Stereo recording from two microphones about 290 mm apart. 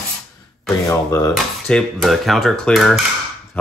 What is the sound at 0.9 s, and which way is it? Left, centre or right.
Speech, centre.